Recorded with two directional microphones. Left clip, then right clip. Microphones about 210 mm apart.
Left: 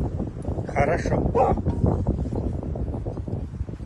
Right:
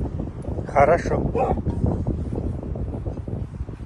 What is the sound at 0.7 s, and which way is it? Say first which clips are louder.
Speech: right 6 dB; 5° left (ahead or behind).